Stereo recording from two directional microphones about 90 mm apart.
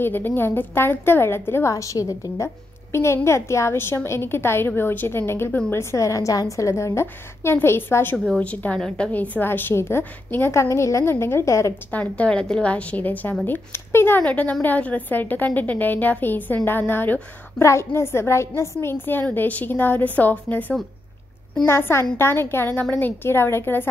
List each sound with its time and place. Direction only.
0.0 s a woman's voice: 20° left (ahead or behind)
8.4 s speech: 15° left (ahead or behind); by 11.7 s 35° left (ahead or behind)
11.9 s a woman's voice: 15° left (ahead or behind)